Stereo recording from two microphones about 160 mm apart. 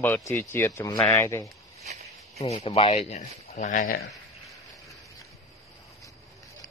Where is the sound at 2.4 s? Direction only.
40° left (ahead or behind).